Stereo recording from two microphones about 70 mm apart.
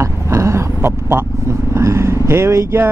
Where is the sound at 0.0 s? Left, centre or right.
Right.